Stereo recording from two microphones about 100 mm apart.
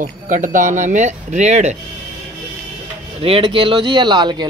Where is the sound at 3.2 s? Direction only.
65° right (ahead or behind); by 4.4 s 50° right (ahead or behind).